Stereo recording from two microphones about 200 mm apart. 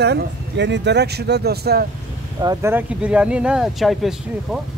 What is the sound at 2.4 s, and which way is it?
Speech, 10° right (ahead or behind).